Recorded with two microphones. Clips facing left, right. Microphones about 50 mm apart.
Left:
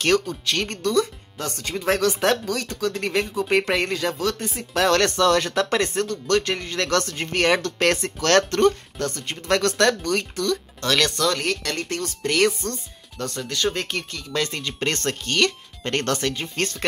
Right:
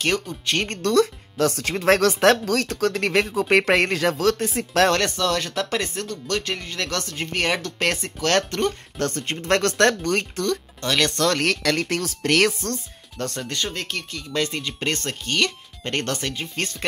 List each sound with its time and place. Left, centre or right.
0.0 s speech: centre
0.5 s speech: right
0.8 s speech: right
5.1 s speech: centre
8.9 s speech: right
10.8 s speech: centre
11.1 s speech: right
11.4 s speech: right
13.2 s speech: right
13.7 s speech: centre
14.3 s speech: centre